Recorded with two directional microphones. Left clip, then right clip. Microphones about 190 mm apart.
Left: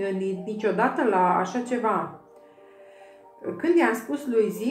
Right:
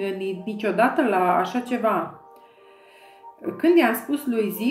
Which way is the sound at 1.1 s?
40° right (ahead or behind).